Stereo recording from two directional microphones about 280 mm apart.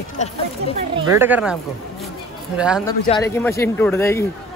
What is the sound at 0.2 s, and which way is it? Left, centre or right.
Speech, left.